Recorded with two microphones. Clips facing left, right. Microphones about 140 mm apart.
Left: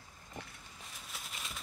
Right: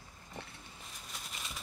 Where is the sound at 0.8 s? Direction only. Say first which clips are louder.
Left 1 dB; centre (ahead or behind).